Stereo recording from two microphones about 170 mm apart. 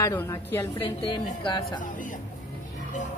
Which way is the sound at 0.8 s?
25° left (ahead or behind).